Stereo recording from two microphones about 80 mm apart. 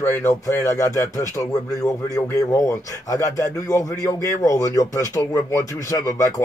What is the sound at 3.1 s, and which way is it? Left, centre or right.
A man's voice, left.